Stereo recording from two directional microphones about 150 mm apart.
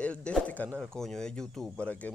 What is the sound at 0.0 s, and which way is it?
Speech, 5° left (ahead or behind).